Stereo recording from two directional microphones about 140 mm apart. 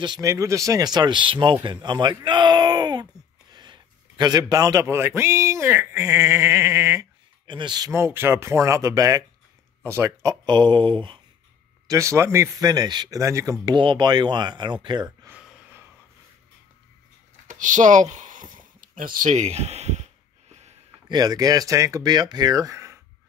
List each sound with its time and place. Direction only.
0.0 s a man's voice: 30° right (ahead or behind)
7.4 s speech: 35° right (ahead or behind)
7.9 s a man's voice: 15° right (ahead or behind); by 11.1 s 35° right (ahead or behind)
11.9 s a man's voice: 20° right (ahead or behind)
13.7 s speech: 35° right (ahead or behind)
15.2 s gasp: 10° right (ahead or behind)
17.5 s a sound: 65° right (ahead or behind)
21.1 s a man's voice: 30° right (ahead or behind)